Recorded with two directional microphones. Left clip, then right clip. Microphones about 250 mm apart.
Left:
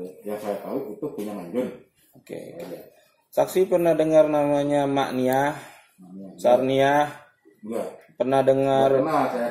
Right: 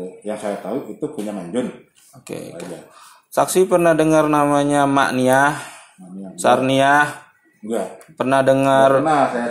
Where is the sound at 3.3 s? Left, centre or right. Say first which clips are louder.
Right 5 dB; right.